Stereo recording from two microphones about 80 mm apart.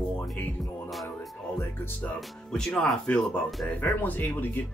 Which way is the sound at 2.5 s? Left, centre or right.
Centre.